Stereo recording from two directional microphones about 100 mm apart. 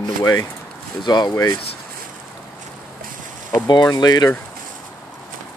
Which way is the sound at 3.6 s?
45° left (ahead or behind).